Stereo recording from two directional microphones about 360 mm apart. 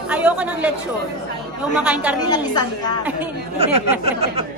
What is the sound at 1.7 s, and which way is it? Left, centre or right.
Speech, centre.